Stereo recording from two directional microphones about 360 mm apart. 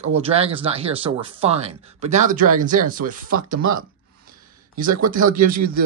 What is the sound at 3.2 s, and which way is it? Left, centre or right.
Speech, right.